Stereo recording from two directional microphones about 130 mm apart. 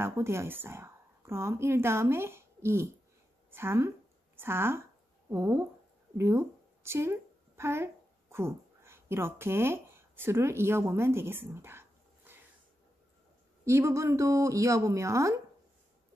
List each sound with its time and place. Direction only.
0.0 s a woman's voice: 20° right (ahead or behind)
12.3 s a sound: 15° right (ahead or behind)
13.7 s a woman's voice: 20° right (ahead or behind)